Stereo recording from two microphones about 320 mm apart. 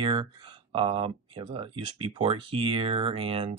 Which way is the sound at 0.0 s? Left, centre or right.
Centre.